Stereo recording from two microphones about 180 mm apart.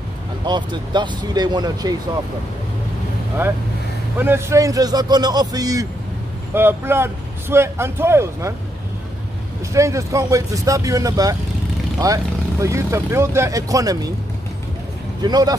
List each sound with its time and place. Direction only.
0.5 s a man's voice: 25° right (ahead or behind)
4.2 s a man's voice: 15° right (ahead or behind)
9.8 s a man's voice: 15° right (ahead or behind)
15.2 s a man's voice: 20° right (ahead or behind)